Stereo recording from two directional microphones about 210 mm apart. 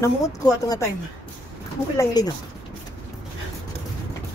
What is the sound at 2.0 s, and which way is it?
Speech, 20° left (ahead or behind).